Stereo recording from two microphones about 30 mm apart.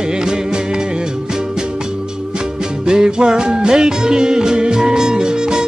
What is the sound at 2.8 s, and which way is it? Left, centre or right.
Music, right.